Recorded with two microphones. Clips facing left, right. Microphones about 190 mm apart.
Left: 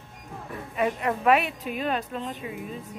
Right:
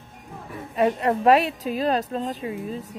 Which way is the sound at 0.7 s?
35° right (ahead or behind).